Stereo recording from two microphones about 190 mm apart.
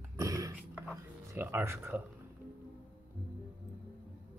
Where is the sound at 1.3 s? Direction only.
15° right (ahead or behind).